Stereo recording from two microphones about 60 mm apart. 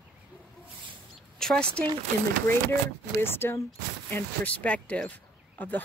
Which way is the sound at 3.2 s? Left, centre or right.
Left.